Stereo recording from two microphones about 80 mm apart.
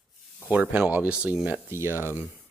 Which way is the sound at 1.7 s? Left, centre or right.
Right.